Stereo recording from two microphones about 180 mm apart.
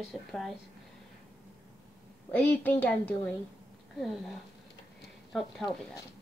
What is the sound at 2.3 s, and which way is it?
A woman's voice, 10° left (ahead or behind).